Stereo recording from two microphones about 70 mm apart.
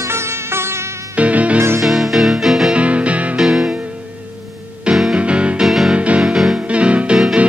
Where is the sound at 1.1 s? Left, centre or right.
Centre.